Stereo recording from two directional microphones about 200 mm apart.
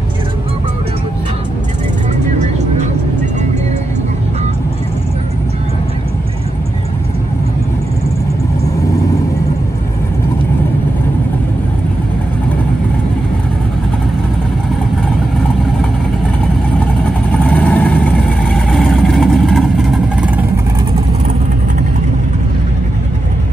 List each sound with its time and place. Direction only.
2.3 s music: 35° right (ahead or behind)
17.3 s vehicle: 5° left (ahead or behind)